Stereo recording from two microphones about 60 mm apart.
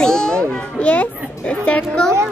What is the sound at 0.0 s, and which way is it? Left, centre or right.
Children playing, centre.